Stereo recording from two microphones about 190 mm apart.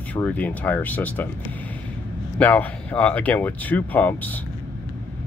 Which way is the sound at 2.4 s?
10° left (ahead or behind).